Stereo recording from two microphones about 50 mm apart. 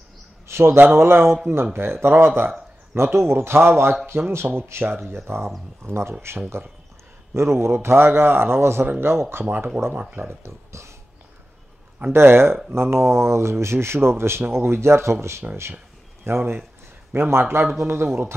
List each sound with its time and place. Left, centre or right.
0.5 s a sound: right
0.9 s speech: right
10.4 s speech: right
12.1 s speech: right